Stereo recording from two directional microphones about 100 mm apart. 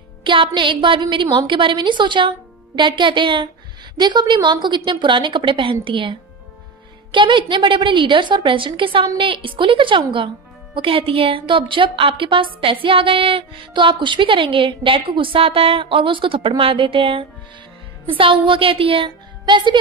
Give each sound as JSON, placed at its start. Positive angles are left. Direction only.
{"t": 0.2, "sound": "a woman's voice", "side_deg": -55}